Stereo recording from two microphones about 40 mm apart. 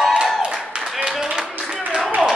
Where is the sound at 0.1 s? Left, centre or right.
Right.